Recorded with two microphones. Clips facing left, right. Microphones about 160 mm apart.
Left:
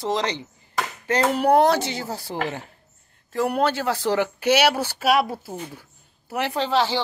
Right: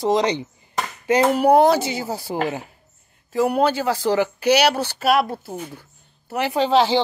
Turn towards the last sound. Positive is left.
turn(degrees=-20)  # may be behind; listen again after turning